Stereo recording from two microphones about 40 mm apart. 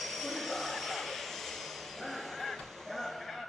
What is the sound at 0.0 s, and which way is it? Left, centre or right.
Vehicle, centre.